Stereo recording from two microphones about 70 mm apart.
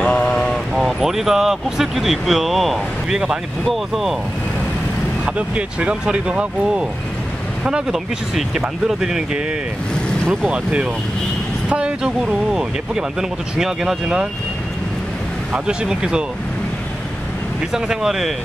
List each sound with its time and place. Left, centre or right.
0.0 s a sound: centre
0.7 s speech: centre
5.8 s speech: centre
10.5 s speech: centre
15.5 s speech: centre
17.7 s speech: centre